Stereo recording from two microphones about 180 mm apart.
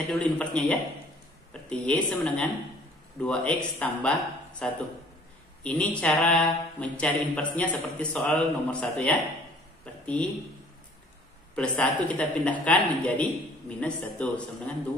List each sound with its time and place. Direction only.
0.1 s a man's voice: 5° left (ahead or behind)
11.5 s a man's voice: 5° left (ahead or behind)